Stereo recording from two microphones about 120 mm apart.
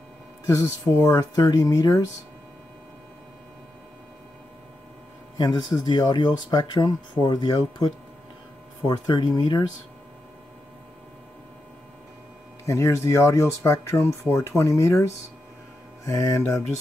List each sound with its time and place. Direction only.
0.5 s speech: 25° left (ahead or behind)
5.4 s speech: 40° left (ahead or behind)
8.8 s speech: 35° left (ahead or behind)
12.6 s speech: 25° left (ahead or behind)
16.1 s speech: 25° left (ahead or behind)